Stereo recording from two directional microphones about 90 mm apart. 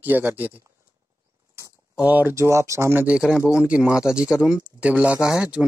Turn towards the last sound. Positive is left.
turn(degrees=-10)  # may be behind; listen again after turning